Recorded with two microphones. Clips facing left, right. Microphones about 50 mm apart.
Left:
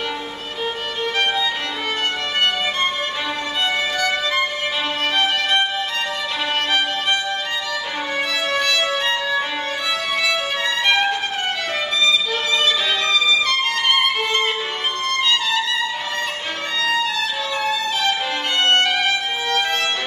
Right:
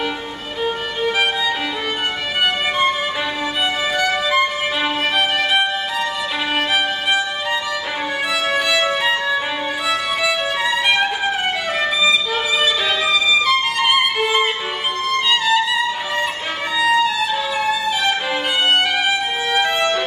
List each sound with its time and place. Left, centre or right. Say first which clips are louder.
4.0 s music: right 6 dB; centre
5.1 s violin: even; centre
8.5 s music: right 3 dB; centre
9.8 s violin: right 2 dB; centre
13.1 s music: right 3 dB; centre
16.8 s violin: right 5 dB; centre
17.6 s music: right 1 dB; centre